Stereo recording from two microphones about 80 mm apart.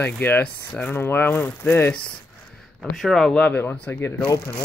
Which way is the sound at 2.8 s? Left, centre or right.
Centre.